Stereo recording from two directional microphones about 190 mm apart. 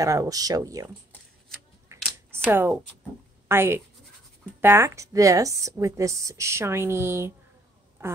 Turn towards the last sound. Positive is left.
turn(degrees=-15)  # may be behind; listen again after turning